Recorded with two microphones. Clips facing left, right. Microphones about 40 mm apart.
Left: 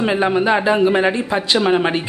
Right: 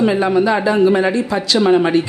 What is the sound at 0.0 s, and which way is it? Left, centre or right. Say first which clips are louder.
A woman's voice: right 2 dB; left.